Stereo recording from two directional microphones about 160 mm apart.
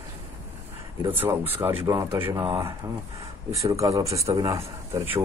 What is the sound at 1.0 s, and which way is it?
Speech, 10° right (ahead or behind).